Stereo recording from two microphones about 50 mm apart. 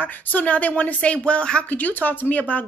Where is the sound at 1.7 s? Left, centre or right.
Left.